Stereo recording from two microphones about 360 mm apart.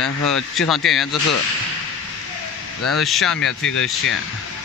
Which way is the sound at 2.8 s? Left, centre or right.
Centre.